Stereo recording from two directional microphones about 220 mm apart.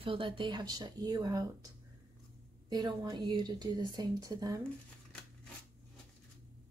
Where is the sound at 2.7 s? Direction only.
20° right (ahead or behind).